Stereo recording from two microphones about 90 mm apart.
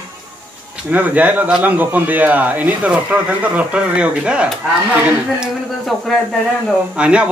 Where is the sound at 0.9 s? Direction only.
15° right (ahead or behind).